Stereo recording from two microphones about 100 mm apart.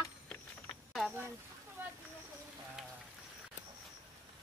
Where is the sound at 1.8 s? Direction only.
20° right (ahead or behind).